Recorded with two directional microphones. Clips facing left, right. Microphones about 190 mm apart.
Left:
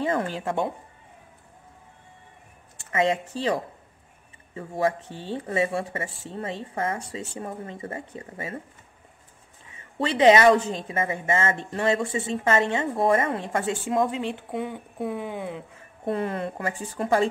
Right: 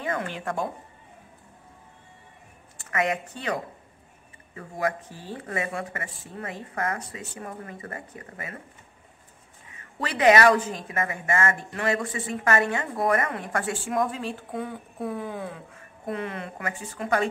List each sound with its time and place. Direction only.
2.9 s a woman's voice: 25° left (ahead or behind)
4.6 s a woman's voice: 25° left (ahead or behind)
9.9 s a woman's voice: 25° left (ahead or behind)
16.1 s speech: 35° left (ahead or behind)